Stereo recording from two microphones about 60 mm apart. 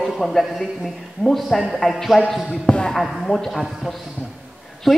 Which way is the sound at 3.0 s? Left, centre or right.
Centre.